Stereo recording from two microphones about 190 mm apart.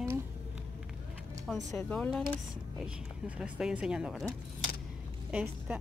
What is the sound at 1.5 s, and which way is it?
Speech, centre (ahead or behind).